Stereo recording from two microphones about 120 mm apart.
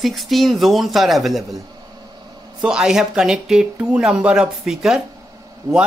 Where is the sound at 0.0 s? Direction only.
Centre (ahead or behind).